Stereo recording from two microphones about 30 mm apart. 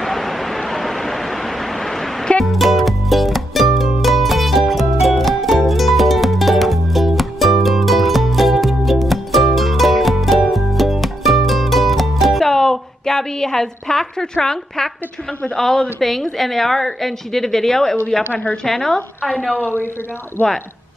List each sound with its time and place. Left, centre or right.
0.0 s vehicle: centre
2.4 s music: centre
12.4 s a sound: centre
15.5 s a woman's voice: centre
18.3 s a woman's voice: left
18.7 s a woman's voice: centre